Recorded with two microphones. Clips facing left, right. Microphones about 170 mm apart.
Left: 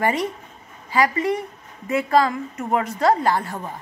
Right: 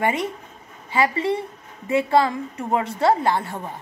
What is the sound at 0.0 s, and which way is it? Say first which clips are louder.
A woman's voice: left 1 dB; 20° right (ahead or behind).